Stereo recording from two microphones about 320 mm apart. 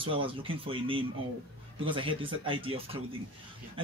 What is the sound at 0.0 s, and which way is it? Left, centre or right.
Speech, centre.